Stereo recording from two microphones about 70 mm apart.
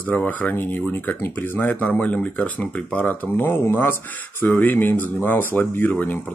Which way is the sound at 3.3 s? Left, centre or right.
Left.